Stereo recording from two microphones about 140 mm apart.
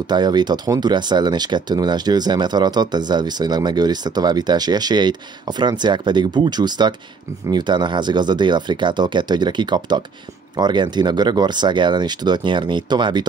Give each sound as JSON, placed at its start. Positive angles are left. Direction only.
{"t": 0.1, "sound": "speech", "side_deg": -30}